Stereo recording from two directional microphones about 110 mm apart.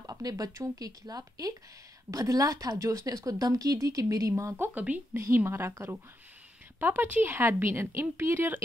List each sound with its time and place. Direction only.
0.0 s a woman's voice: 35° right (ahead or behind)